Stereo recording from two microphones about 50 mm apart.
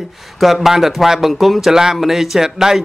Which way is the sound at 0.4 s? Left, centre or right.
Centre.